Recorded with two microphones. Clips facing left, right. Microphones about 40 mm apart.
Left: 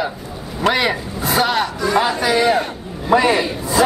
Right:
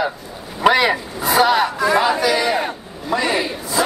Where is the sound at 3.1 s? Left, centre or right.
Left.